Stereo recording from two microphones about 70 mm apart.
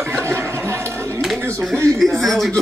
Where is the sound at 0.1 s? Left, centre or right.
Right.